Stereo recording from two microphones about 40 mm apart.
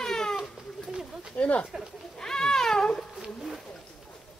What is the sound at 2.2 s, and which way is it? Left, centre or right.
Cat, centre.